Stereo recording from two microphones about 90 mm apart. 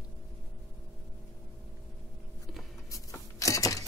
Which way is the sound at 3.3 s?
40° left (ahead or behind).